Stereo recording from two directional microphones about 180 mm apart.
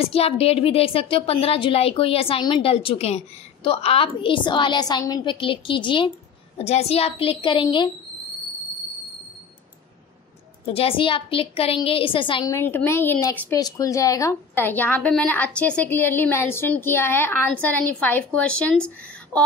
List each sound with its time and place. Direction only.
0.0 s a woman's voice: 35° left (ahead or behind)
10.6 s a woman's voice: 30° left (ahead or behind)
12.5 s a woman's voice: 10° left (ahead or behind)
19.3 s a sound: 5° left (ahead or behind)